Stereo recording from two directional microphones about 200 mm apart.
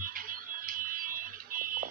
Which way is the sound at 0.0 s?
45° right (ahead or behind).